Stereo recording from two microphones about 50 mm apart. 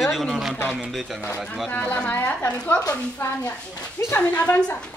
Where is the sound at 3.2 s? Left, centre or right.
Left.